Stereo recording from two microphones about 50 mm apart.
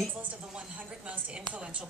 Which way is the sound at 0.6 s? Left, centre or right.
Right.